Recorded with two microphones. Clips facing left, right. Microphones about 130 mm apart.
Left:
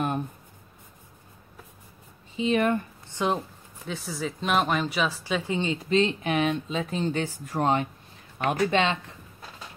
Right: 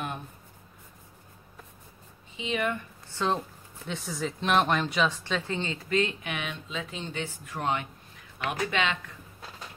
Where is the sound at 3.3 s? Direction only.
5° left (ahead or behind); by 9.1 s 30° left (ahead or behind).